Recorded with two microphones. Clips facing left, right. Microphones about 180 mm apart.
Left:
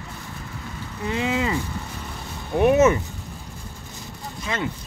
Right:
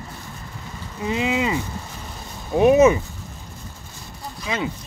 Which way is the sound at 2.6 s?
15° right (ahead or behind).